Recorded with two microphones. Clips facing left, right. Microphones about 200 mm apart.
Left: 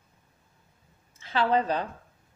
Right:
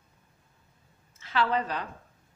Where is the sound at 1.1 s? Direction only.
30° left (ahead or behind).